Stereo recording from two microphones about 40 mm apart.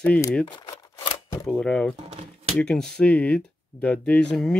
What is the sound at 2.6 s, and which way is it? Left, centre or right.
Speech, left.